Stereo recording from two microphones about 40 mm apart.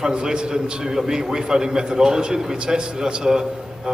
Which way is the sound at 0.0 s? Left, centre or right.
Centre.